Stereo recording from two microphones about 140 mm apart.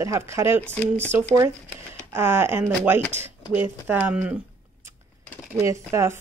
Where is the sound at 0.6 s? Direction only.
10° left (ahead or behind).